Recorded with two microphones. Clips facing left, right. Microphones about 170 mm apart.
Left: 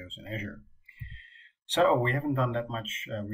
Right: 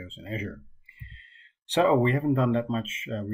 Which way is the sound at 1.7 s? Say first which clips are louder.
Right 3 dB; 10° right (ahead or behind).